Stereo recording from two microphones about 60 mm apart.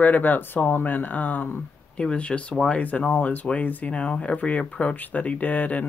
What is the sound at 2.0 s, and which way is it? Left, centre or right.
Speech, centre.